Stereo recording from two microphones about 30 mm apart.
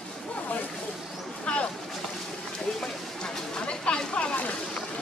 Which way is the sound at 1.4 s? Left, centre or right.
Left.